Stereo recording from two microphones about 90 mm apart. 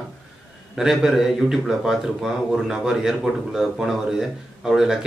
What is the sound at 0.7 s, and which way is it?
Speech, 5° right (ahead or behind).